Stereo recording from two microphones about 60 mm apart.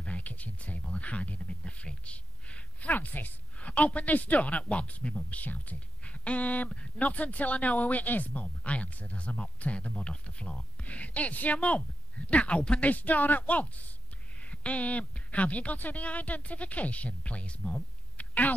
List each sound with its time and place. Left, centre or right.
0.0 s speech: left